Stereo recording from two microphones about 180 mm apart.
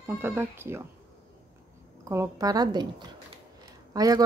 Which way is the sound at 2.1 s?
20° right (ahead or behind).